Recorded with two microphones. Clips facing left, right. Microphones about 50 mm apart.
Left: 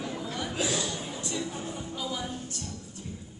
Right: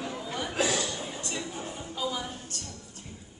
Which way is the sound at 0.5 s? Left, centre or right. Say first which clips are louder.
Right 3 dB; right.